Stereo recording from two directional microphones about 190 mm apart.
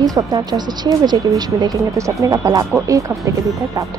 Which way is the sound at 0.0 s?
20° right (ahead or behind).